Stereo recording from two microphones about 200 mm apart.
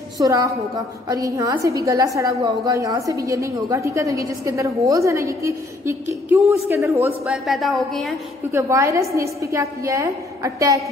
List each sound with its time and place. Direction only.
0.2 s a woman's voice: 15° right (ahead or behind)
7.2 s a woman's voice: centre (ahead or behind)
8.5 s a woman's voice: 15° right (ahead or behind)